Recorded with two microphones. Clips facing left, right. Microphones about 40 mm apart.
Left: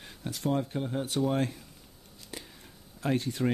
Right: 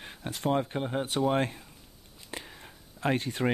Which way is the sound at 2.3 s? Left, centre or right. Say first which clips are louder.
Right 4 dB; right.